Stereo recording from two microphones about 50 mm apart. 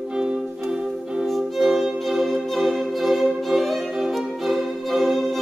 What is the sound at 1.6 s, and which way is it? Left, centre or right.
Violin, centre.